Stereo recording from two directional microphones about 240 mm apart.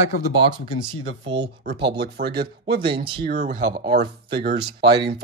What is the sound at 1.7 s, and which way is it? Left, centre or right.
Speech, right.